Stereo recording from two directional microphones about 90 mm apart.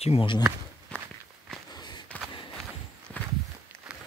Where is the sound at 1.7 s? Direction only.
50° left (ahead or behind).